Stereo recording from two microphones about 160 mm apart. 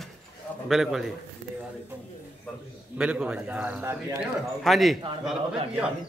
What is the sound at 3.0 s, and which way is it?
A man's voice, 5° right (ahead or behind).